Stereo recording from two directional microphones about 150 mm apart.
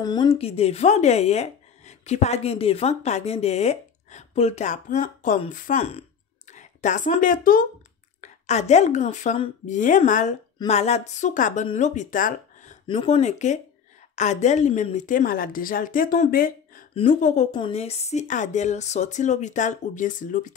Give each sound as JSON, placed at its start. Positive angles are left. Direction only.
{"t": 0.0, "sound": "speech", "side_deg": 25}
{"t": 0.3, "sound": "a woman's voice", "side_deg": 40}
{"t": 5.8, "sound": "a woman's voice", "side_deg": 45}
{"t": 8.2, "sound": "a woman's voice", "side_deg": 50}
{"t": 10.7, "sound": "speech", "side_deg": 45}
{"t": 13.0, "sound": "a woman's voice", "side_deg": 50}
{"t": 17.2, "sound": "a woman's voice", "side_deg": 55}